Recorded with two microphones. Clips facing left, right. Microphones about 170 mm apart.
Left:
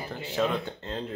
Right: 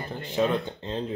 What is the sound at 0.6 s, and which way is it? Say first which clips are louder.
Speech: right 2 dB; 15° right (ahead or behind).